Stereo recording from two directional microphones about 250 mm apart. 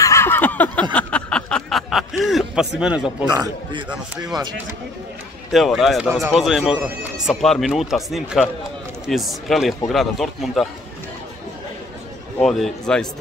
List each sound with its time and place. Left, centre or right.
0.0 s a sound: centre
2.8 s speech: centre
3.3 s speech: centre
5.5 s speech: centre
12.4 s speech: centre